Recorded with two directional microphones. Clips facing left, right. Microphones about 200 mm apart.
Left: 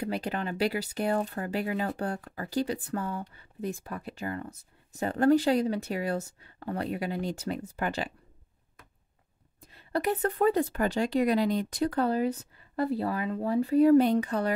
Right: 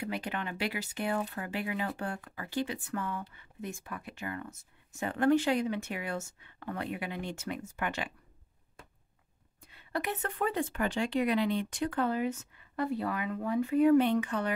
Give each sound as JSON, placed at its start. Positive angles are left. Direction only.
{"t": 0.0, "sound": "speech", "side_deg": 35}
{"t": 9.7, "sound": "speech", "side_deg": 35}